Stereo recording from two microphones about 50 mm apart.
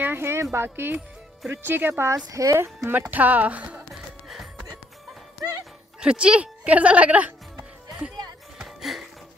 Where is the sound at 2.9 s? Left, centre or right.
Right.